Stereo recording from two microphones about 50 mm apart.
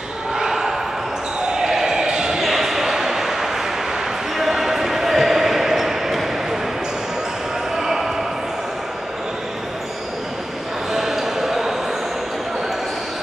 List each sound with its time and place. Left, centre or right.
0.4 s basketball bounce: centre
1.5 s a sound: centre
4.4 s basketball bounce: centre
7.7 s basketball bounce: centre
10.9 s basketball bounce: centre